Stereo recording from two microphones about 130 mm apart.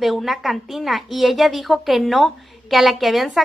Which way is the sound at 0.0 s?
Centre (ahead or behind).